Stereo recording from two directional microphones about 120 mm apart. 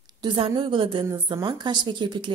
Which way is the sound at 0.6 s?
45° right (ahead or behind).